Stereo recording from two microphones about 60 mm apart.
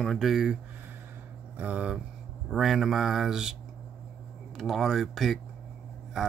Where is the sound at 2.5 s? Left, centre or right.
Centre.